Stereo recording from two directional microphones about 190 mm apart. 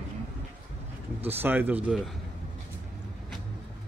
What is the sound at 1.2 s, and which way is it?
Speech, 10° right (ahead or behind).